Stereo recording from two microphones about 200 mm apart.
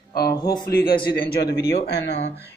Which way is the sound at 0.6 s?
45° left (ahead or behind).